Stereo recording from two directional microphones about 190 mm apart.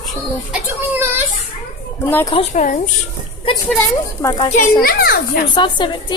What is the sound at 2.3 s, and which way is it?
Speech, 35° left (ahead or behind).